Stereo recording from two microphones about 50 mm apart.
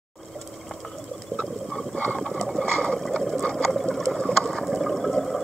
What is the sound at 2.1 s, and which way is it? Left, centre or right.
Water, centre.